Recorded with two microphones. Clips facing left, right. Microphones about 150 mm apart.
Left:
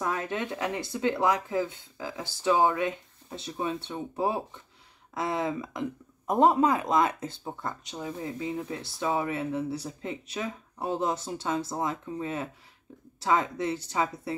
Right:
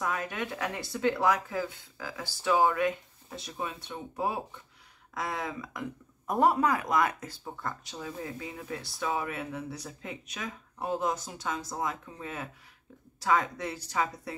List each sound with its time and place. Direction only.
0.0 s speech: 30° left (ahead or behind)